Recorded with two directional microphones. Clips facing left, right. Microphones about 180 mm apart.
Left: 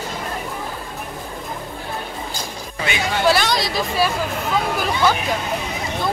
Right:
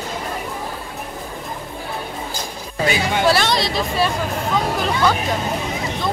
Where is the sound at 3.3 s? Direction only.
Centre (ahead or behind).